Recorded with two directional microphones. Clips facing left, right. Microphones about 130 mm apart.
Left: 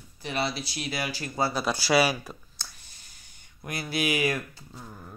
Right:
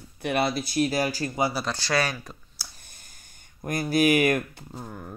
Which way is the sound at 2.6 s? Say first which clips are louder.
Left 1 dB; 10° right (ahead or behind).